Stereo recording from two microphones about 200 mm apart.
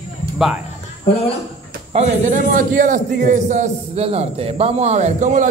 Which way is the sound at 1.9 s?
35° right (ahead or behind).